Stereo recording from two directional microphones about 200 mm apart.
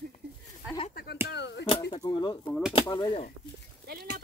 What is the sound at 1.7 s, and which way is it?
Speech, 30° left (ahead or behind).